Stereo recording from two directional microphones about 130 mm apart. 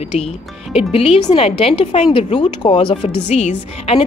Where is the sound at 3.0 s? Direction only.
60° left (ahead or behind).